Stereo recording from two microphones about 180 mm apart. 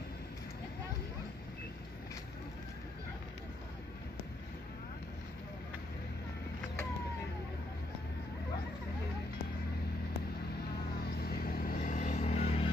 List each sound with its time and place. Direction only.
11.2 s vehicle: 60° left (ahead or behind); by 12.6 s 35° left (ahead or behind)